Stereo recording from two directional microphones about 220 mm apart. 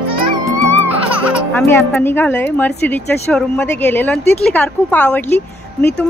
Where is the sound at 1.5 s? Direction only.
10° left (ahead or behind).